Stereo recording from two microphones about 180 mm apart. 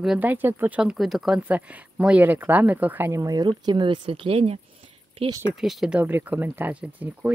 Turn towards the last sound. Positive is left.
turn(degrees=-10)  # may be behind; listen again after turning